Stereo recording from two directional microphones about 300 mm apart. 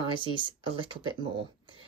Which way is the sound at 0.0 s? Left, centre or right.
Centre.